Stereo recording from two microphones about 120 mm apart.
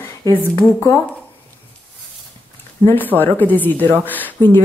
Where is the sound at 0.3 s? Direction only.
20° left (ahead or behind).